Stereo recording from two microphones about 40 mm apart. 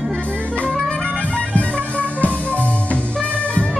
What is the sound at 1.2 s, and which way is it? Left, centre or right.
Music, left.